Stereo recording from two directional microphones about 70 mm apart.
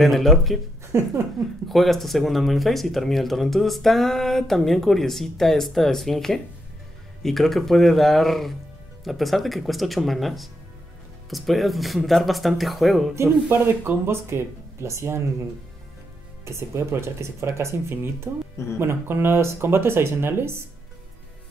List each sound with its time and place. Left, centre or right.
0.0 s speech: centre
0.9 s speech: right
1.7 s speech: centre
13.1 s speech: right
16.4 s speech: right